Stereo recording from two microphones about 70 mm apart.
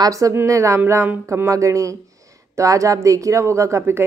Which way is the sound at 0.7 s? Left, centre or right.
Right.